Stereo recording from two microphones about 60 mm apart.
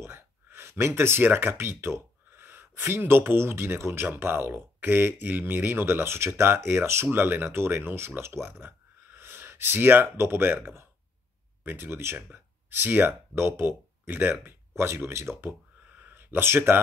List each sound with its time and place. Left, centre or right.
0.0 s speech: right
7.1 s speech: right
15.0 s speech: right
16.1 s speech: right